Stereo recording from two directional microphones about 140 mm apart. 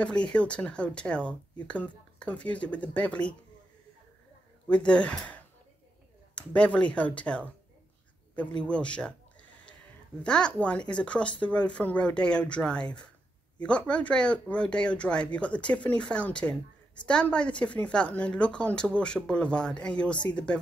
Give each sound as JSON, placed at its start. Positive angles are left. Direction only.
{"t": 0.0, "sound": "a woman's voice", "side_deg": 5}
{"t": 4.6, "sound": "a woman's voice", "side_deg": 10}
{"t": 8.6, "sound": "a woman's voice", "side_deg": 5}
{"t": 10.2, "sound": "a woman's voice", "side_deg": 5}